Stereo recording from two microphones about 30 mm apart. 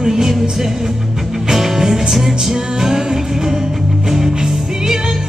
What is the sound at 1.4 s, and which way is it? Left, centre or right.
Music, centre.